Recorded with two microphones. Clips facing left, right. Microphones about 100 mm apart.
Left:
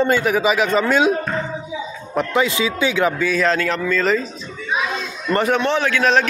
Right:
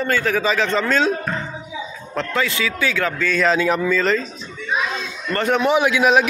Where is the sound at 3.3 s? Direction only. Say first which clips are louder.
Even; centre (ahead or behind).